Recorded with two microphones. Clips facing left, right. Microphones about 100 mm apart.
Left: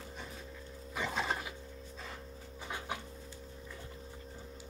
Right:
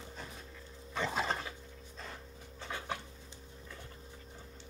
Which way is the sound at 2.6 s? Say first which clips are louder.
Right 1 dB; 15° left (ahead or behind).